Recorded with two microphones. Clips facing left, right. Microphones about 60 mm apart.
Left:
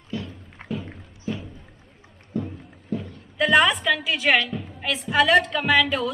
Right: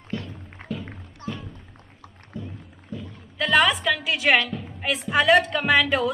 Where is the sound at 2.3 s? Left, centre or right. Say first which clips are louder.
Left 7 dB; left.